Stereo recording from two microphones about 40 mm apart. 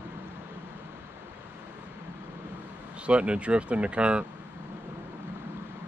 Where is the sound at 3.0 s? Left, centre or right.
Right.